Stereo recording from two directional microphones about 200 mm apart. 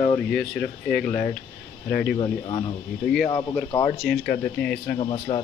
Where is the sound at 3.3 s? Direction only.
20° left (ahead or behind).